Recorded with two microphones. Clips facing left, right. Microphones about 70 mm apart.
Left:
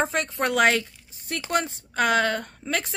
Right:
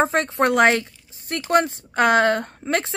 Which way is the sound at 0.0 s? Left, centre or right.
Right.